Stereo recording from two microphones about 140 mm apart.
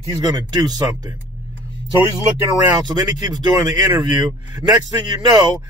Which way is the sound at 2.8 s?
30° right (ahead or behind).